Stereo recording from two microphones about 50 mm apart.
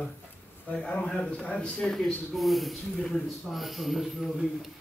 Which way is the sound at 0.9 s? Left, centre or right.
Centre.